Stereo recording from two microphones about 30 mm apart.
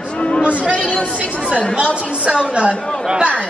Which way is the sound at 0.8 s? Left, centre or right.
Left.